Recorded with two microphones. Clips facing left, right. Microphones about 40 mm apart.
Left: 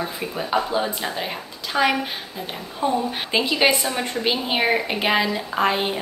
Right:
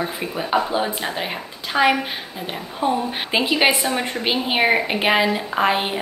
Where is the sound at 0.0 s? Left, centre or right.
Centre.